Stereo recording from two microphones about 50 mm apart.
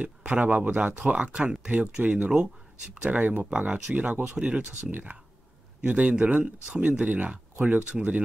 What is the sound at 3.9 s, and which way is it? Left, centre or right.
Speech, centre.